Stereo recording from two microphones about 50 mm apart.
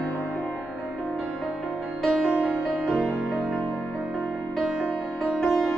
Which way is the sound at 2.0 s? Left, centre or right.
Centre.